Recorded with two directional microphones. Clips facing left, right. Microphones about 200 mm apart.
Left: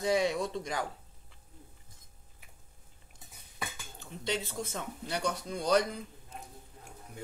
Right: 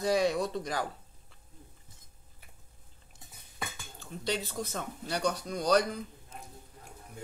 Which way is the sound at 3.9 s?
20° left (ahead or behind).